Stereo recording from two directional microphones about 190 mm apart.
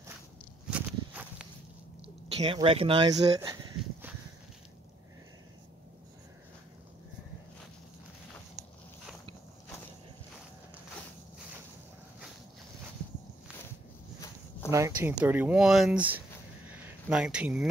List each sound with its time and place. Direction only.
0.7 s walk: 5° right (ahead or behind)
2.3 s speech: 30° right (ahead or behind)
14.7 s speech: 15° right (ahead or behind)
16.6 s a sound: 10° right (ahead or behind)